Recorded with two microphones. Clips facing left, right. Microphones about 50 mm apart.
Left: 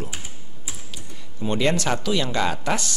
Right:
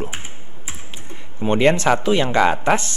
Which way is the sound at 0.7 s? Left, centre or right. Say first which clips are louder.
Right 3 dB; right.